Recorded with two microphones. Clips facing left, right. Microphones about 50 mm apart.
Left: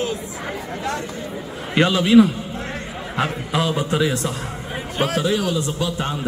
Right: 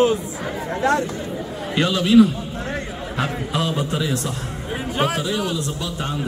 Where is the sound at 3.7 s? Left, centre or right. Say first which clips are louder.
Left 3 dB; left.